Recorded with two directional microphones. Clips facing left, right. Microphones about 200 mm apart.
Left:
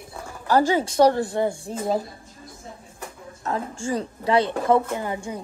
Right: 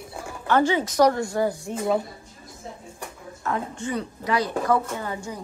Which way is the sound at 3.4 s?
30° left (ahead or behind).